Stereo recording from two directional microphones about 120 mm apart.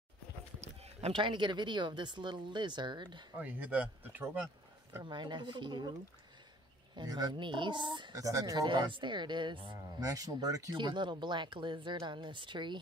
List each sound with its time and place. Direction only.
0.6 s a sound: 60° right (ahead or behind)
1.1 s speech: 40° right (ahead or behind)
3.3 s speech: 15° right (ahead or behind)
5.0 s speech: 40° right (ahead or behind)
7.0 s speech: 35° right (ahead or behind)
8.6 s speech: 40° right (ahead or behind)
10.0 s speech: 30° right (ahead or behind)